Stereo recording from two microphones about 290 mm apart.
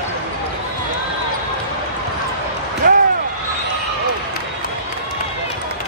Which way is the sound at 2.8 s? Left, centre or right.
Right.